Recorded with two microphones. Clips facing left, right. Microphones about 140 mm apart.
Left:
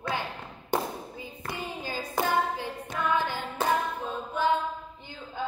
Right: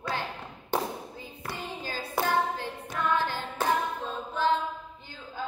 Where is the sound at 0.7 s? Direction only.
15° left (ahead or behind).